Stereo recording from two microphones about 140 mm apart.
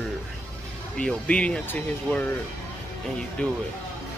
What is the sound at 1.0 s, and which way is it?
Speech, 10° left (ahead or behind).